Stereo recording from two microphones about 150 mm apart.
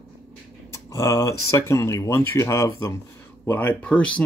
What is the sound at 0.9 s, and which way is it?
Speech, 20° left (ahead or behind).